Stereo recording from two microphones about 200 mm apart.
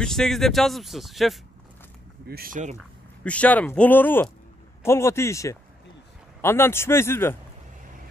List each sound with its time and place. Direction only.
0.0 s speech: centre (ahead or behind)
2.2 s speech: 50° right (ahead or behind)
3.3 s speech: 5° left (ahead or behind)